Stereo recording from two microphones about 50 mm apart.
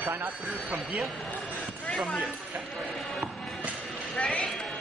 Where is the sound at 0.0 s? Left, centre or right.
Right.